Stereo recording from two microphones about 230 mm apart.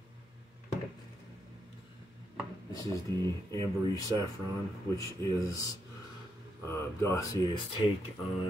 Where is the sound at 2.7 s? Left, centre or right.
Centre.